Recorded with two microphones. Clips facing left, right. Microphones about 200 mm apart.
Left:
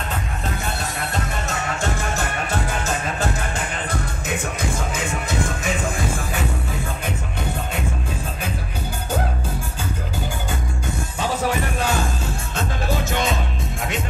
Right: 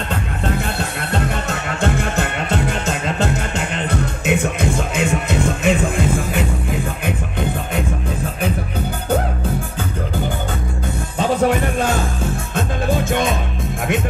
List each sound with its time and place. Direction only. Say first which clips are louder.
3.2 s music: right 4 dB; 65° right (ahead or behind)
11.1 s music: right 7 dB; 55° right (ahead or behind)